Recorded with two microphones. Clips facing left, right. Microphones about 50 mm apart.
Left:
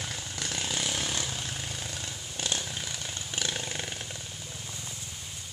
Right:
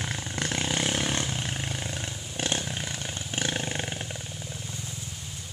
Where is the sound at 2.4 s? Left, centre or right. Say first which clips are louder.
Right 4 dB; right.